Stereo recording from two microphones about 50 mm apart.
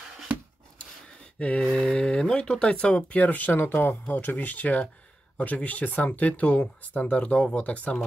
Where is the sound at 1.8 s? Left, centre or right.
Centre.